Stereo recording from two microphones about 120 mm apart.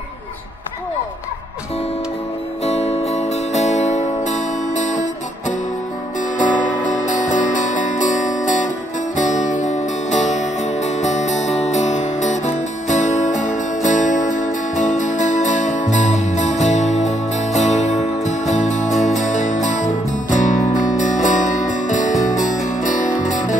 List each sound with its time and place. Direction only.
2.6 s music: 60° left (ahead or behind); by 5.0 s 90° left
6.3 s music: 90° left; by 17.9 s 75° left (ahead or behind)
18.5 s music: 90° left